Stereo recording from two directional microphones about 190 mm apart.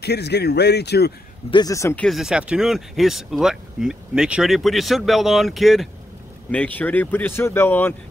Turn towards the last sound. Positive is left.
turn(degrees=10)  # may be behind; listen again after turning